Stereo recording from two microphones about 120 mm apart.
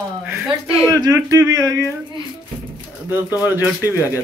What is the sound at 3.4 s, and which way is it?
Speech, 15° right (ahead or behind).